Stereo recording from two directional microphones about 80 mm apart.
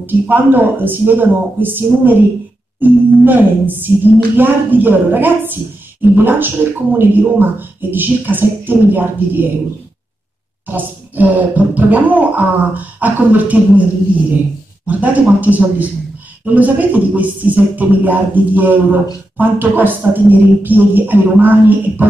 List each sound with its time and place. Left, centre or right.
0.0 s a man's voice: right
10.7 s a man's voice: right
14.9 s a man's voice: centre